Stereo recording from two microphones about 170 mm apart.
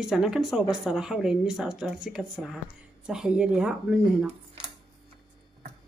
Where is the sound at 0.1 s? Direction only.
5° right (ahead or behind).